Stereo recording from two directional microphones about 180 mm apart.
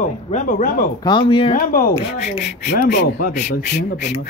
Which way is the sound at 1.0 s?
25° left (ahead or behind).